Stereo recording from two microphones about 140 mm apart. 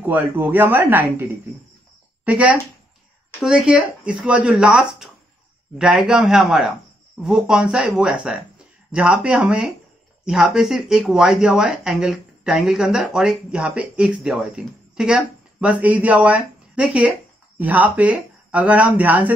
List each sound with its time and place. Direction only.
0.0 s speech: 15° right (ahead or behind)